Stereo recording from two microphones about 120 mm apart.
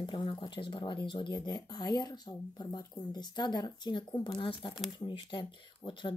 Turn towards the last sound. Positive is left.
turn(degrees=40)  # may be behind; listen again after turning